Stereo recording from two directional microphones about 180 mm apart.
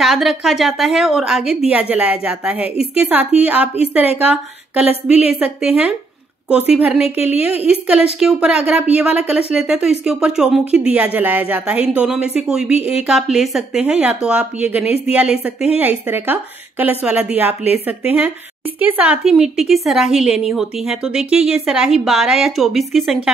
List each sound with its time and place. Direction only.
0.0 s a woman's voice: centre (ahead or behind)
7.0 s a woman's voice: 35° left (ahead or behind)
7.8 s a woman's voice: 5° right (ahead or behind)